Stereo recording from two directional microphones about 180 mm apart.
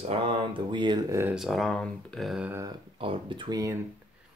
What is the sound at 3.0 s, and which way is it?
Speech, 30° right (ahead or behind).